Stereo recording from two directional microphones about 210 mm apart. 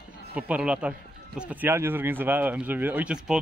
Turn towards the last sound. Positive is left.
turn(degrees=-5)  # may be behind; listen again after turning